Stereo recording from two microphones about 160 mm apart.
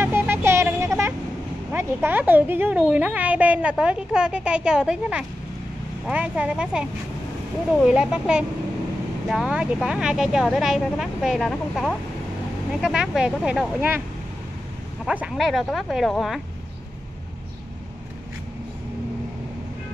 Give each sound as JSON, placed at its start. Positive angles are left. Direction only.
{"t": 0.0, "sound": "vehicle", "side_deg": -15}
{"t": 1.7, "sound": "speech", "side_deg": -15}
{"t": 15.0, "sound": "speech", "side_deg": -5}